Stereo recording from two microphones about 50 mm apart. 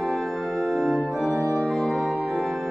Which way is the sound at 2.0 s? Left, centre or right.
Right.